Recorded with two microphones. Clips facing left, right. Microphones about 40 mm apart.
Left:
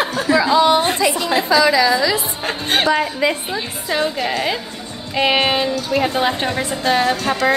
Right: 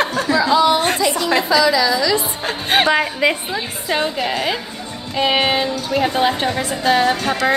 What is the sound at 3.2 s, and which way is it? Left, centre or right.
Speech, right.